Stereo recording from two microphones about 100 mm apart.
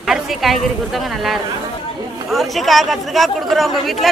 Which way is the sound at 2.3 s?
Centre (ahead or behind).